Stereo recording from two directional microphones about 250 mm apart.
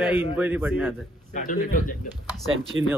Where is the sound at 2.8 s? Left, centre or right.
Right.